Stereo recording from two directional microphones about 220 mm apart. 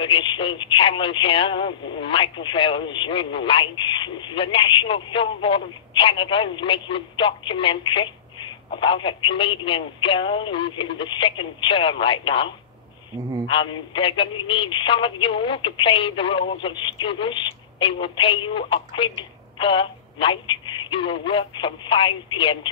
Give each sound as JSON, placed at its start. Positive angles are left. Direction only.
{"t": 0.0, "sound": "speech", "side_deg": 20}
{"t": 13.5, "sound": "speech", "side_deg": 20}